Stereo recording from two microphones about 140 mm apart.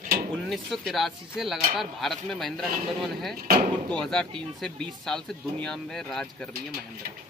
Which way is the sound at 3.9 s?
5° left (ahead or behind).